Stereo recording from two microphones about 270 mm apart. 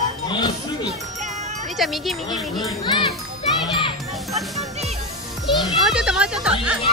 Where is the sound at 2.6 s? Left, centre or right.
Centre.